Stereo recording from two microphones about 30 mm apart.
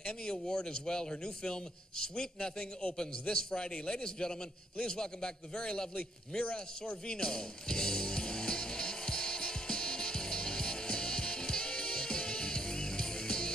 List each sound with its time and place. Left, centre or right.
0.0 s a man's voice: left
4.0 s a man's voice: left
6.5 s music: left